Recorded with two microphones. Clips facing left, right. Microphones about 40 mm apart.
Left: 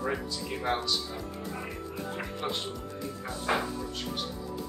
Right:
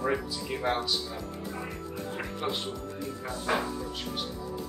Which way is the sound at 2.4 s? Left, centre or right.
Centre.